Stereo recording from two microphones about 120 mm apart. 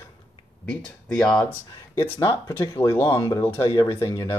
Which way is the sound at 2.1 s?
35° left (ahead or behind).